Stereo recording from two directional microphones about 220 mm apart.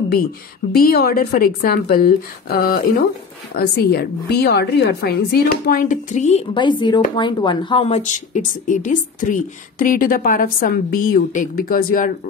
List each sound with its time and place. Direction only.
0.7 s a woman's voice: 45° left (ahead or behind)